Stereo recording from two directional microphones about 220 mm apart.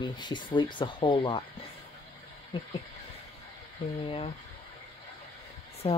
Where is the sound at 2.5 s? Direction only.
20° left (ahead or behind).